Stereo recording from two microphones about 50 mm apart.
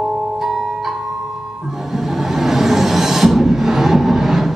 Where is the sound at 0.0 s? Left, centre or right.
Centre.